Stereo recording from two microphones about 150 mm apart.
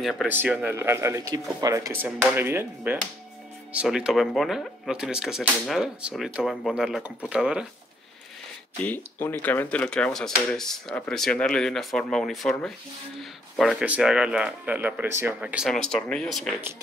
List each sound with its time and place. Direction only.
0.0 s speech: centre (ahead or behind)
0.3 s speech: 10° right (ahead or behind)
8.8 s speech: 15° left (ahead or behind); by 15.8 s 5° right (ahead or behind)
15.9 s speech: 5° left (ahead or behind)